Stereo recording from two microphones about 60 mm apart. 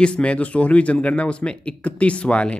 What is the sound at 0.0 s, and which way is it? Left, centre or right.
Speech, centre.